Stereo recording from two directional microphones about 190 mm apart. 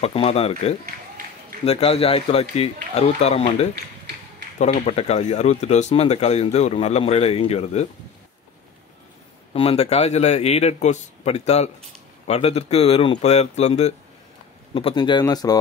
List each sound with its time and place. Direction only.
0.0 s speech: 30° left (ahead or behind)
9.5 s speech: 30° left (ahead or behind)